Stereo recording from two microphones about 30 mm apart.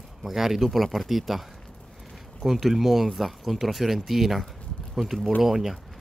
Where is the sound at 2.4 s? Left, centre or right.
Centre.